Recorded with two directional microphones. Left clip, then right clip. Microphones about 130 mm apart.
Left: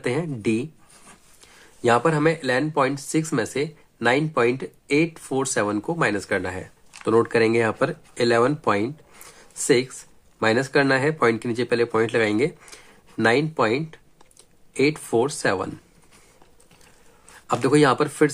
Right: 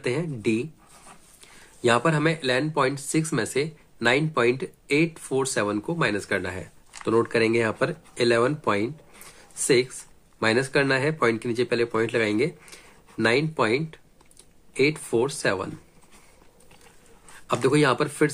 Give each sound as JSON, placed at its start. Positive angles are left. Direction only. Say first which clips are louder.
{"t": 0.0, "sound": "speech", "louder": "left 2 dB", "side_deg": 40}
{"t": 1.8, "sound": "speech", "louder": "left 2 dB", "side_deg": 30}
{"t": 17.5, "sound": "speech", "louder": "left 3 dB", "side_deg": 35}